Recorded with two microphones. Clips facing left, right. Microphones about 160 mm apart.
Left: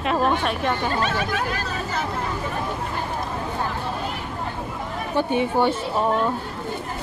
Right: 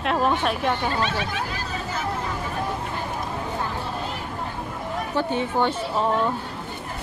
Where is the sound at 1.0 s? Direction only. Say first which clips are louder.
Left 2 dB; 50° left (ahead or behind).